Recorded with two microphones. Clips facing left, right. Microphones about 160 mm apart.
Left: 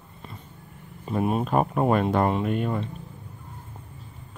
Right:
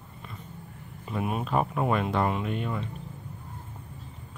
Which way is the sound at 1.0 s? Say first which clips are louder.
Left 6 dB; 35° left (ahead or behind).